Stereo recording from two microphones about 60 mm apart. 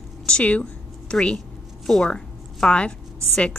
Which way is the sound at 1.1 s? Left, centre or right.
Centre.